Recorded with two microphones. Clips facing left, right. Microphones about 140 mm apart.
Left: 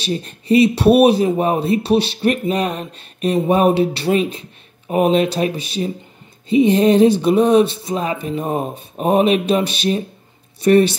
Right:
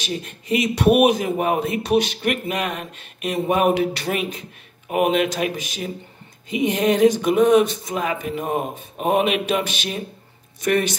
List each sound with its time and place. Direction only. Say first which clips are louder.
0.0 s speech: left 5 dB; 35° left (ahead or behind)